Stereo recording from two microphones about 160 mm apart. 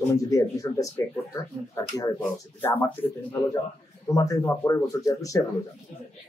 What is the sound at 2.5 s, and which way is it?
Speech, 15° left (ahead or behind).